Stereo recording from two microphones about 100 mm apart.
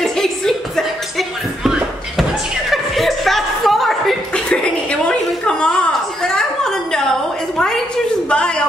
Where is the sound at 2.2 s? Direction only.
Centre (ahead or behind).